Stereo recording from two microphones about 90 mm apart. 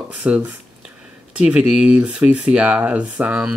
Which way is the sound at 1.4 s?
15° right (ahead or behind).